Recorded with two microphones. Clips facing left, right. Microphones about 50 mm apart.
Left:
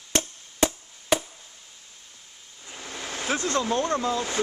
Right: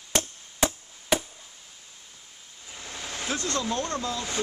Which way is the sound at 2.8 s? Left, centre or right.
Left.